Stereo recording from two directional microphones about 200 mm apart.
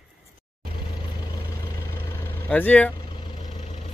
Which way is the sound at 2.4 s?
5° left (ahead or behind).